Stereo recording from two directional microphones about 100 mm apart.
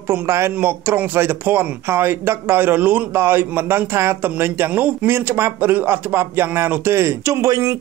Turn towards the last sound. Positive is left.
turn(degrees=-30)  # may be behind; listen again after turning